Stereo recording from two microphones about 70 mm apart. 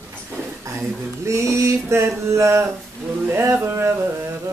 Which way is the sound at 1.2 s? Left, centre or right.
Right.